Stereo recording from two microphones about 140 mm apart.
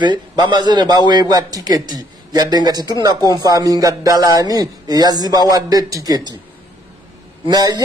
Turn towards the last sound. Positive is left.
turn(degrees=-30)  # may be behind; listen again after turning